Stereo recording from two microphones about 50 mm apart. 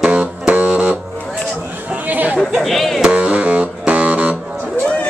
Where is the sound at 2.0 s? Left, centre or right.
Right.